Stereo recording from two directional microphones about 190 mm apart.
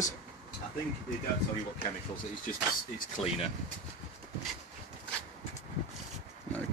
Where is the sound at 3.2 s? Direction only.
Centre (ahead or behind).